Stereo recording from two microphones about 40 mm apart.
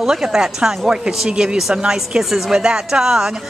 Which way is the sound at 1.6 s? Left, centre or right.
Centre.